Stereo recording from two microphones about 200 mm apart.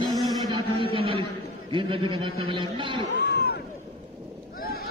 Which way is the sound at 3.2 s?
55° left (ahead or behind).